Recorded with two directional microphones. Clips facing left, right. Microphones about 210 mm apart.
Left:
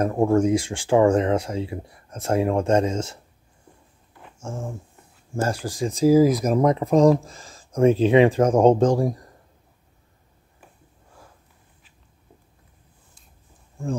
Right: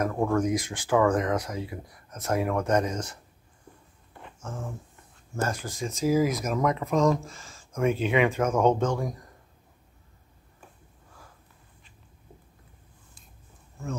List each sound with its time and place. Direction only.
0.0 s speech: 25° left (ahead or behind)
4.4 s a sound: 25° left (ahead or behind)
5.3 s speech: 30° left (ahead or behind)